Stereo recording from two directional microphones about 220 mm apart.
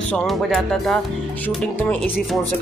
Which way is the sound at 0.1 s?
Centre (ahead or behind).